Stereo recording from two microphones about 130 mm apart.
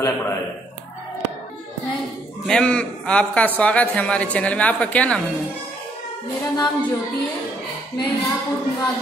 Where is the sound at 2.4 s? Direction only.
5° left (ahead or behind).